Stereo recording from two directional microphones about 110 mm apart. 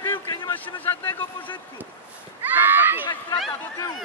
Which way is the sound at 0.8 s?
20° left (ahead or behind).